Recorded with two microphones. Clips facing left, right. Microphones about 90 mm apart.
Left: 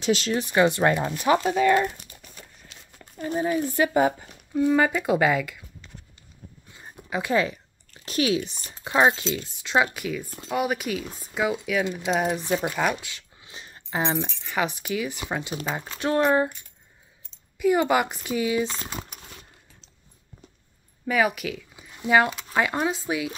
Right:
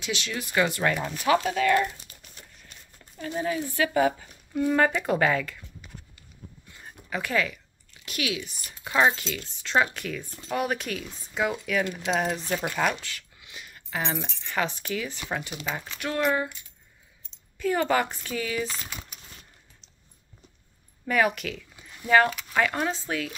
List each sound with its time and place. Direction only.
0.0 s speech: 35° left (ahead or behind); by 1.9 s 20° left (ahead or behind)
2.7 s a sound: 90° left
3.3 s speech: 15° left (ahead or behind)
4.6 s speech: 5° left (ahead or behind)
7.1 s speech: 20° left (ahead or behind)
13.4 s keys jangling: 30° left (ahead or behind)
14.4 s speech: 10° left (ahead or behind)
15.9 s speech: 30° left (ahead or behind)
17.6 s speech: 15° left (ahead or behind)
18.8 s speech: 40° left (ahead or behind)
21.1 s speech: 5° left (ahead or behind)